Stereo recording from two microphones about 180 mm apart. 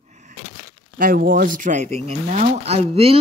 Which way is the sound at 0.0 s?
40° right (ahead or behind).